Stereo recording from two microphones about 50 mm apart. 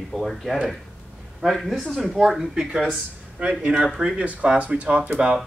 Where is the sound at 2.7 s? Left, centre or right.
Right.